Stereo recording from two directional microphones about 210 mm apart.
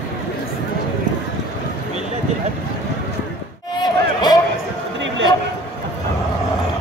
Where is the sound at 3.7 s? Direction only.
20° left (ahead or behind).